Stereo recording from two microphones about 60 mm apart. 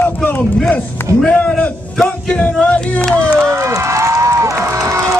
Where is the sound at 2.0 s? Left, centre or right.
Centre.